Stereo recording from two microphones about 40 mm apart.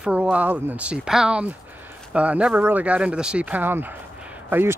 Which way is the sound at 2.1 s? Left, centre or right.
Right.